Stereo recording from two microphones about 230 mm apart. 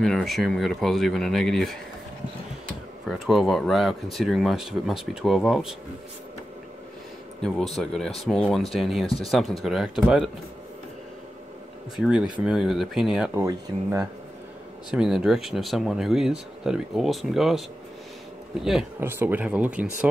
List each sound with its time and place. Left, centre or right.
0.0 s speech: centre
3.1 s speech: centre
7.4 s speech: centre
12.4 s speech: centre